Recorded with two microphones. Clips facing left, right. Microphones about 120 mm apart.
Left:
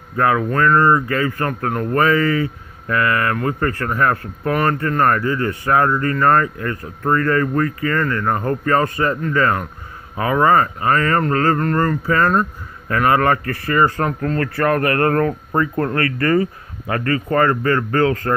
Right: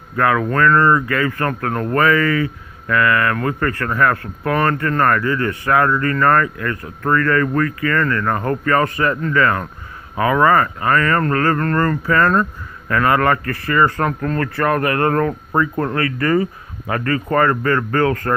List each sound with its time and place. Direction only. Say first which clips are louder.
0.1 s speech: even; 25° left (ahead or behind)
14.6 s speech: left 1 dB; 25° right (ahead or behind)
17.4 s speech: even; 30° left (ahead or behind)